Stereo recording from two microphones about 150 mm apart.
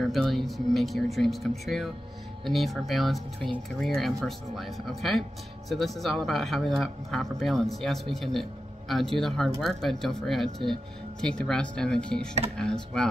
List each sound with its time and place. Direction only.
0.0 s speech: centre (ahead or behind)